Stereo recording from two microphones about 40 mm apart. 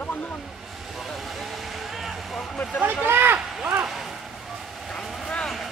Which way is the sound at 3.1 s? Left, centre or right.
Right.